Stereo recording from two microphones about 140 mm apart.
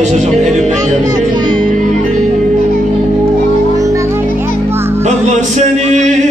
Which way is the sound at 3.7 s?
20° right (ahead or behind).